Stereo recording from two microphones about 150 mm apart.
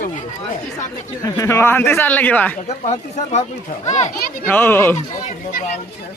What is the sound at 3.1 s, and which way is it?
Speech, 50° left (ahead or behind).